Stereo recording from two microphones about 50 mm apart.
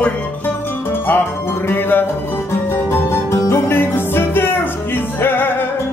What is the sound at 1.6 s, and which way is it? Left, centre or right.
Music, left.